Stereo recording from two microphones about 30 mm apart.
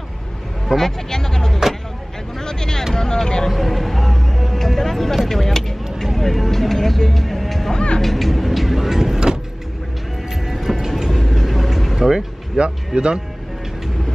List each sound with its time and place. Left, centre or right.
0.7 s speech: centre
2.3 s a sound: centre
2.9 s speech: centre
3.4 s speech: centre
8.0 s vehicle: centre
10.3 s music: centre
11.1 s vehicle: centre
11.9 s speech: centre
12.5 s speech: right